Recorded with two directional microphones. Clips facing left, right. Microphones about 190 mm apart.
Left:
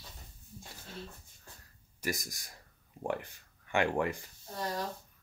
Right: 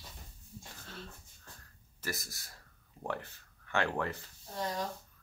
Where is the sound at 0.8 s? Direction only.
15° left (ahead or behind).